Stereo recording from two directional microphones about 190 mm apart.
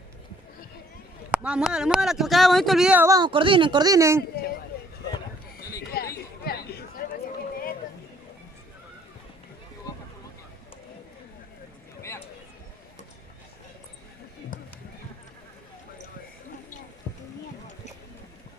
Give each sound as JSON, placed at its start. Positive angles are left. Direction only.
{"t": 1.3, "sound": "speech", "side_deg": -5}
{"t": 3.1, "sound": "speech", "side_deg": -25}
{"t": 6.0, "sound": "a sound", "side_deg": 55}
{"t": 6.4, "sound": "chatter", "side_deg": 55}
{"t": 14.5, "sound": "a sound", "side_deg": 45}
{"t": 17.1, "sound": "music", "side_deg": 25}